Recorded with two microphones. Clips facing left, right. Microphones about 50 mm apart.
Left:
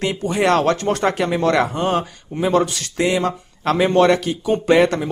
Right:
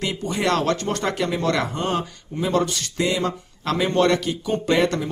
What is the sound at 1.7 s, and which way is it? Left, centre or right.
Speech, centre.